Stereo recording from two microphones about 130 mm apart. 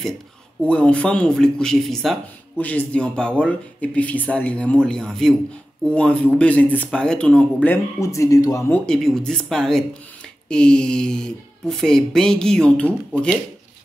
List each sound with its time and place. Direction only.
0.6 s speech: 10° left (ahead or behind)
8.0 s speech: 25° left (ahead or behind)
8.7 s speech: 5° left (ahead or behind)